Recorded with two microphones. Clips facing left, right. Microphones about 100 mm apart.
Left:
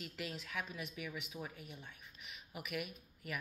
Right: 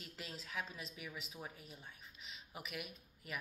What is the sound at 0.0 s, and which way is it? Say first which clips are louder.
A woman's voice: left 5 dB; 35° right (ahead or behind).